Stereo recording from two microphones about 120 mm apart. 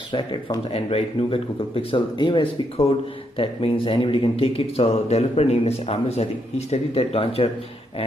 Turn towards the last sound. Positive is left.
turn(degrees=55)  # may be behind; listen again after turning